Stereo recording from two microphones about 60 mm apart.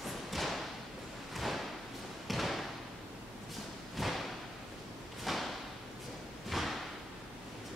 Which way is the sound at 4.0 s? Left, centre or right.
Centre.